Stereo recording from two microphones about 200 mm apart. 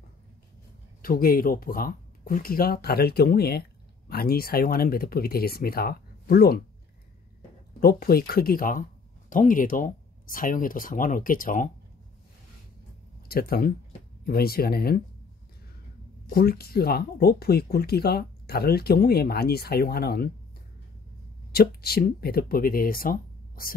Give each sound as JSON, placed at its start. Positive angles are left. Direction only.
{"t": 1.0, "sound": "speech", "side_deg": 45}
{"t": 7.8, "sound": "speech", "side_deg": 50}
{"t": 13.3, "sound": "speech", "side_deg": 50}
{"t": 16.3, "sound": "speech", "side_deg": 50}
{"t": 21.5, "sound": "speech", "side_deg": 50}